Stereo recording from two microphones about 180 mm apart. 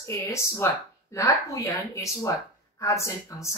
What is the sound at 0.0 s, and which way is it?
Speech, 15° left (ahead or behind).